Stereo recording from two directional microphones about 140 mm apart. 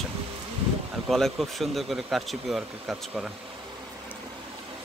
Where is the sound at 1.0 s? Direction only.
Centre (ahead or behind).